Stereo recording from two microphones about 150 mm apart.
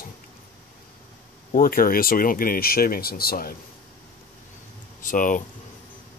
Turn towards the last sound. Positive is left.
turn(degrees=60)  # may be behind; listen again after turning